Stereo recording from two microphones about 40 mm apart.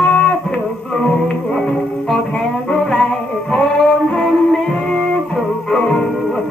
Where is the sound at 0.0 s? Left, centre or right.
Centre.